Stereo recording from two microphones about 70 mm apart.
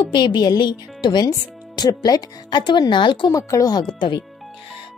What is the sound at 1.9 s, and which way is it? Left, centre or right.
Speech, left.